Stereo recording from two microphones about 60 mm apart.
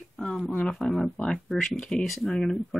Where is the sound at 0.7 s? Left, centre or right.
Centre.